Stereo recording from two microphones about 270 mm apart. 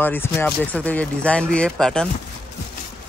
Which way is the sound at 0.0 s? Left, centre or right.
Centre.